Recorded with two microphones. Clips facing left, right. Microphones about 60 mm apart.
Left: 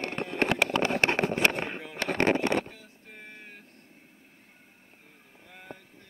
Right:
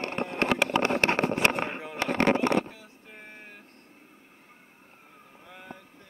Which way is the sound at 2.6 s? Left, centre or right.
Right.